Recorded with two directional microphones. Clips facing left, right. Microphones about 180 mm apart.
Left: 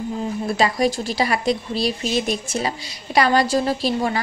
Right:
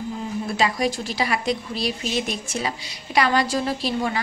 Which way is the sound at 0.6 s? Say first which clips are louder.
Left 3 dB; 40° left (ahead or behind).